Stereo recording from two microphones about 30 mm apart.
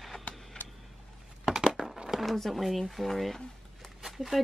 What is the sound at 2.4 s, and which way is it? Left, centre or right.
Speech, centre.